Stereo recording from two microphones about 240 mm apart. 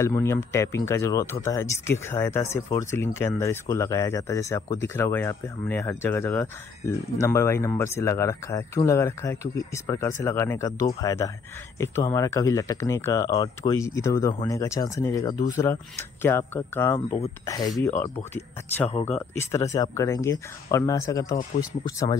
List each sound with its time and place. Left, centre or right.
0.0 s speech: centre
18.9 s speech: left
19.1 s speech: centre